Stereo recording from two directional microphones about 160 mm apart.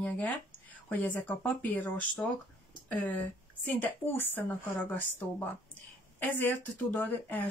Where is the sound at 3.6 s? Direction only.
10° left (ahead or behind).